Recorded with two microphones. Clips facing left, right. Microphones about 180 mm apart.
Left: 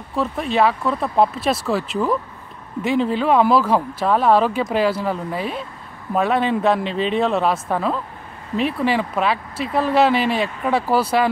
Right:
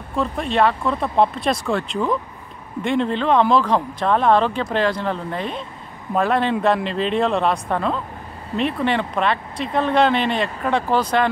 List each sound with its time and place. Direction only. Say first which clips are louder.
0.1 s speech: even; centre (ahead or behind)